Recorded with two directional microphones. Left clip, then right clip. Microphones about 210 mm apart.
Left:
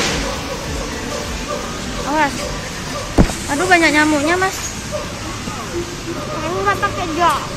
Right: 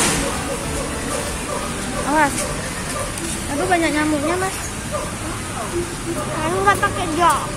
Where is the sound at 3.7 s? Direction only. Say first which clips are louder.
Left 7 dB; 20° left (ahead or behind).